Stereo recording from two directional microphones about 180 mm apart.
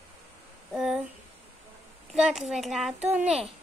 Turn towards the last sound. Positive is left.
turn(degrees=-5)  # may be behind; listen again after turning